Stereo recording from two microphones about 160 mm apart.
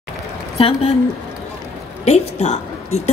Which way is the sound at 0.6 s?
40° left (ahead or behind).